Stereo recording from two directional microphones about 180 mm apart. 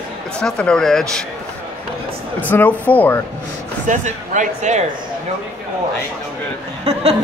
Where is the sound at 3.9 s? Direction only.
40° right (ahead or behind).